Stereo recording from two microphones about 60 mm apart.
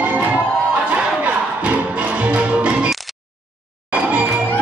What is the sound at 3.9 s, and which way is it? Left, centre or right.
Music, right.